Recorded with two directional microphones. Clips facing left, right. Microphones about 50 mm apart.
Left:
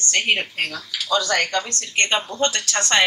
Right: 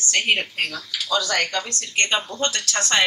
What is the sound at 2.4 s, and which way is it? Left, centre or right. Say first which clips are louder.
Speech: left 3 dB; left.